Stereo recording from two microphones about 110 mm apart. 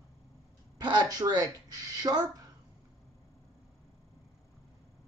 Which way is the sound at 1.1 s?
35° right (ahead or behind).